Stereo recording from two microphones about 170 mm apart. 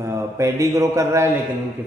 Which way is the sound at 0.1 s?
15° right (ahead or behind).